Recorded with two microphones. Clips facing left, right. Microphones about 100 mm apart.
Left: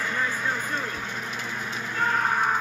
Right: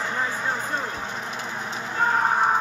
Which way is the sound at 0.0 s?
20° right (ahead or behind).